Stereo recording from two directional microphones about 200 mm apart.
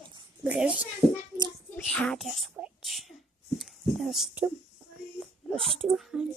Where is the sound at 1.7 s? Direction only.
5° left (ahead or behind).